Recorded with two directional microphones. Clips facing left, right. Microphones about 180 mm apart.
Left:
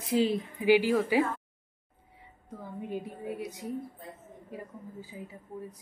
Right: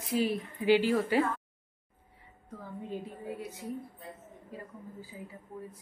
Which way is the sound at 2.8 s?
15° left (ahead or behind).